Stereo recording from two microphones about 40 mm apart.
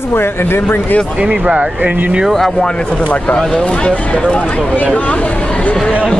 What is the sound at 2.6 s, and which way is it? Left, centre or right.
Speech, left.